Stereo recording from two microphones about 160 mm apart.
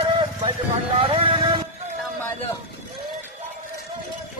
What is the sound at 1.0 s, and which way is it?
Vehicle, 35° right (ahead or behind).